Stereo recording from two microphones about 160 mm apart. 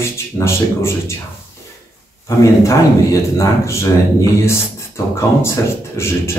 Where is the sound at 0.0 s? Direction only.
15° left (ahead or behind).